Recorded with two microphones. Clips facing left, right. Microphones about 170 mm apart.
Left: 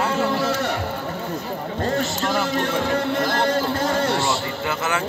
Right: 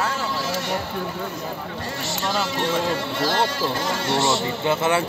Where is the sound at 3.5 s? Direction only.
55° left (ahead or behind).